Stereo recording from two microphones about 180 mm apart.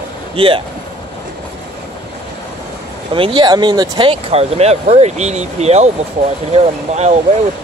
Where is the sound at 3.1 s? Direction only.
30° right (ahead or behind).